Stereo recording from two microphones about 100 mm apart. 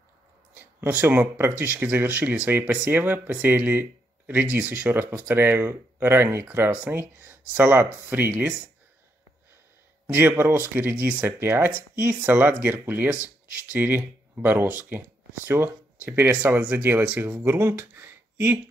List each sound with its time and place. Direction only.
0.6 s speech: 20° right (ahead or behind)
10.0 s speech: 15° right (ahead or behind)